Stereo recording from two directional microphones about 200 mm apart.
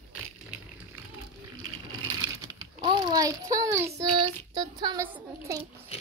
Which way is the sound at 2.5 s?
20° right (ahead or behind).